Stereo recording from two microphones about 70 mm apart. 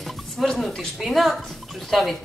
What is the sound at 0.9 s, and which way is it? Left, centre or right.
A woman's voice, centre.